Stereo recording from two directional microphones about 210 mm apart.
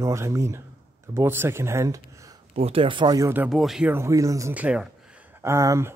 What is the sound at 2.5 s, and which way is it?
Speech, 30° right (ahead or behind).